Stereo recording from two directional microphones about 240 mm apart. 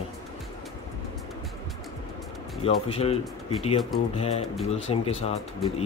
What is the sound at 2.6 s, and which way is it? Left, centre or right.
Speech, left.